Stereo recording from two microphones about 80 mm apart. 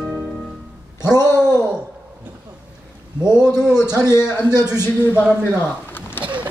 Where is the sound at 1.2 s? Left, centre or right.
Left.